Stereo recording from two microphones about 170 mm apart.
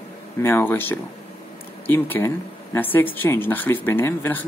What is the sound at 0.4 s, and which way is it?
Speech, 15° left (ahead or behind).